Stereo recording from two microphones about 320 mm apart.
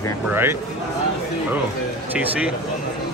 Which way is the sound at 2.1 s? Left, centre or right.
Centre.